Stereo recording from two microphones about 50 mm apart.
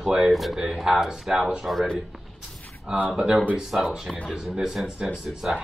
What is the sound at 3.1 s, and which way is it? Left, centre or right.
Speech, centre.